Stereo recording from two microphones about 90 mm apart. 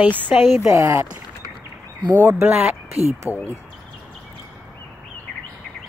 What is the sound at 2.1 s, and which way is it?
Speech, 30° right (ahead or behind).